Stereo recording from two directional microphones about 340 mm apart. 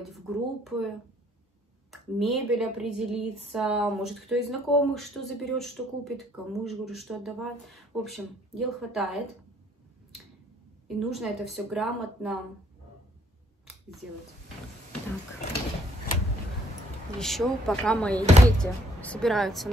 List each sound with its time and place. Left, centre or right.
0.1 s speech: centre
1.9 s speech: centre
10.9 s speech: centre
17.2 s speech: centre
18.2 s speech: centre
18.6 s speech: centre